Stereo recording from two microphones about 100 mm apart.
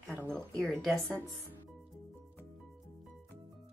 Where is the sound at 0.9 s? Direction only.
20° right (ahead or behind).